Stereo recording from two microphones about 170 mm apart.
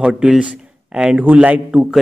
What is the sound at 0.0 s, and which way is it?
A man's voice, 5° right (ahead or behind).